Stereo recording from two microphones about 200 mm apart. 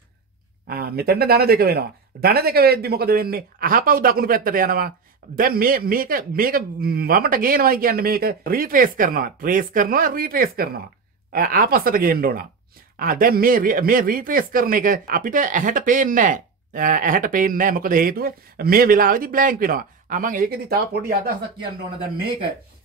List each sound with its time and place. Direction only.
0.7 s speech: 50° right (ahead or behind)